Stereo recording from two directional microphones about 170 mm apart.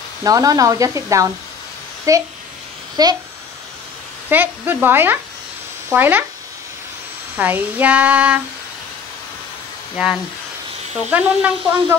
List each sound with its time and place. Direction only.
0.2 s speech: 20° right (ahead or behind)
4.3 s child singing: 10° right (ahead or behind)
7.3 s child singing: 10° right (ahead or behind)
11.1 s child singing: 5° right (ahead or behind)